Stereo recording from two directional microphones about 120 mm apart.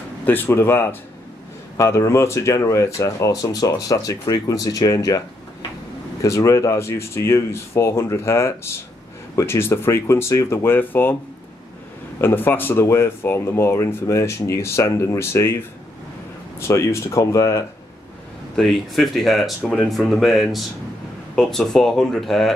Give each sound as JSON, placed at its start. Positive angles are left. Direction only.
{"t": 0.2, "sound": "speech", "side_deg": 15}
{"t": 6.2, "sound": "speech", "side_deg": 25}
{"t": 12.2, "sound": "speech", "side_deg": 20}
{"t": 16.5, "sound": "speech", "side_deg": 25}
{"t": 18.6, "sound": "speech", "side_deg": 0}